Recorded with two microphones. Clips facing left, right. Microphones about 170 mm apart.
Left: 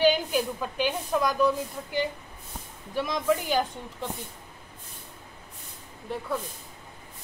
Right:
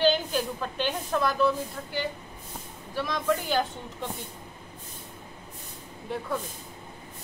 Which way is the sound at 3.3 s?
10° left (ahead or behind).